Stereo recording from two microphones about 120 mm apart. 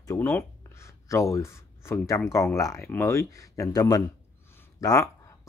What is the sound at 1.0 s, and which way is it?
Speech, 25° left (ahead or behind).